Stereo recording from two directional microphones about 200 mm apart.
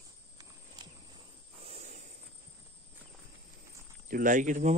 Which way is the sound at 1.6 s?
30° right (ahead or behind).